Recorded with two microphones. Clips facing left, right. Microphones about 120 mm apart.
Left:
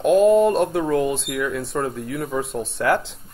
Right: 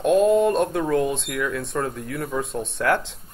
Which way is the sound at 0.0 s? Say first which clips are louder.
Left 3 dB; centre (ahead or behind).